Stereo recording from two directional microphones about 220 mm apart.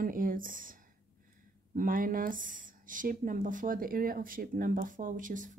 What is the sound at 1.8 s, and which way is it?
Speech, 40° right (ahead or behind).